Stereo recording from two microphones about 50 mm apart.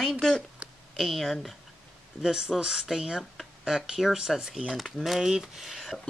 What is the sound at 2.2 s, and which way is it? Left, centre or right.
Speech, centre.